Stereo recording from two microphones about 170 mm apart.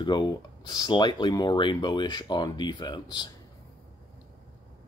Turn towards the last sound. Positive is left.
turn(degrees=25)  # may be behind; listen again after turning